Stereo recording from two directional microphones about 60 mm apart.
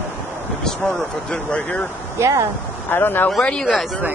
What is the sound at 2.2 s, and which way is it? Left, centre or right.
Speech, right.